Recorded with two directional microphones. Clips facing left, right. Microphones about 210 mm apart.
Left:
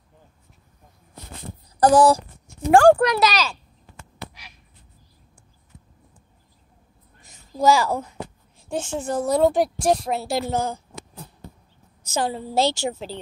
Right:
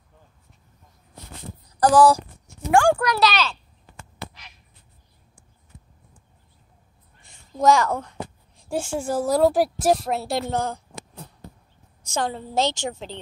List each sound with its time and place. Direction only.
1.8 s a sound: 20° left (ahead or behind)
2.7 s speech: 30° left (ahead or behind)
3.3 s a woman's voice: 5° left (ahead or behind)
7.2 s a sound: 40° left (ahead or behind)
7.5 s a woman's voice: 5° left (ahead or behind)
8.5 s a woman's voice: 5° right (ahead or behind)
12.0 s a woman's voice: 5° left (ahead or behind)